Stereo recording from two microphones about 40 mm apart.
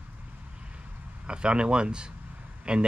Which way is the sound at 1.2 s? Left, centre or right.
Right.